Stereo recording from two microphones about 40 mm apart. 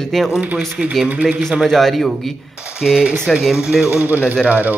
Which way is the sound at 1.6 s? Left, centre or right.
Centre.